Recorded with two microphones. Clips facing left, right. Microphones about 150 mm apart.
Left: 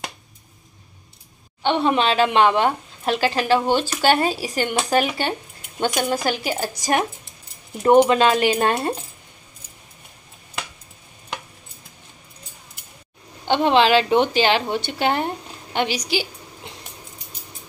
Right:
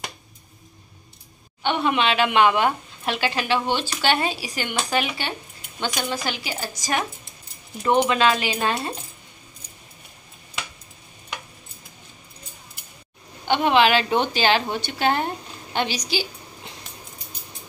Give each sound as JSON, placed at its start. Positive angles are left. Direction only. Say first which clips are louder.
{"t": 1.6, "sound": "a woman's voice", "louder": "left 3 dB", "side_deg": 30}
{"t": 7.8, "sound": "speech", "louder": "left 5 dB", "side_deg": 40}
{"t": 13.5, "sound": "a woman's voice", "louder": "left 2 dB", "side_deg": 25}